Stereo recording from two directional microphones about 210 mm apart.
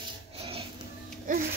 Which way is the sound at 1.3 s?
40° right (ahead or behind).